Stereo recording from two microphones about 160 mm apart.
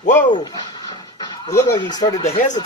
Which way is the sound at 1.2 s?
20° left (ahead or behind).